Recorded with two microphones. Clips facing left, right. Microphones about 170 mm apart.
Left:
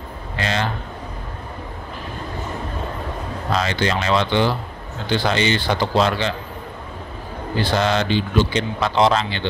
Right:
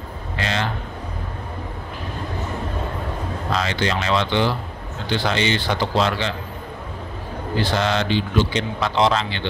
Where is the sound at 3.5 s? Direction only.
45° left (ahead or behind).